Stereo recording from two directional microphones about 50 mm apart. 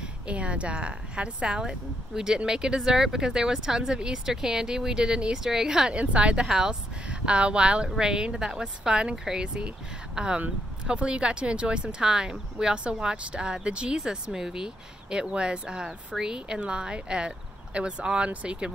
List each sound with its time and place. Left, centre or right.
0.0 s a woman's voice: right
5.9 s speech: right
6.4 s a woman's voice: centre
7.1 s a woman's voice: right